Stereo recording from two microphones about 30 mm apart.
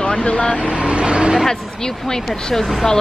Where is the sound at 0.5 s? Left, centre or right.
Right.